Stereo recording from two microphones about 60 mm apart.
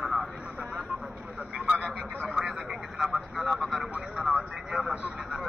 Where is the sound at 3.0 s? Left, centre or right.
Centre.